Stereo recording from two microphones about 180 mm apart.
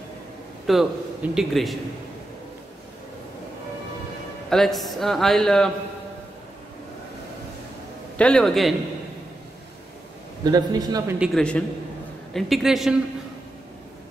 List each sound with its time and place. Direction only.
0.7 s speech: centre (ahead or behind)
4.5 s speech: centre (ahead or behind)
8.2 s speech: 5° left (ahead or behind)
10.4 s a man's voice: 20° right (ahead or behind)
11.1 s speech: 5° left (ahead or behind)